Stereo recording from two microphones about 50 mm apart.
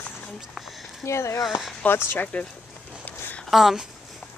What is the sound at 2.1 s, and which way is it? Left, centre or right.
Speech, left.